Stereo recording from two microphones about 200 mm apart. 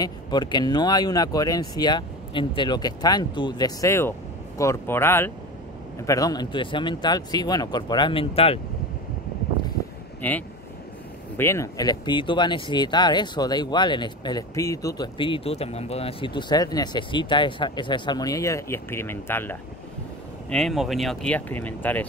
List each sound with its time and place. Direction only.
0.0 s speech: 20° left (ahead or behind)
10.2 s speech: 10° left (ahead or behind)